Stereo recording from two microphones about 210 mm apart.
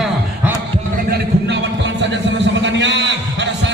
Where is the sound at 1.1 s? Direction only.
55° right (ahead or behind).